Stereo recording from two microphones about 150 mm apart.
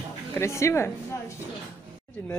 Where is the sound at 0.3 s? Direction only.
20° left (ahead or behind).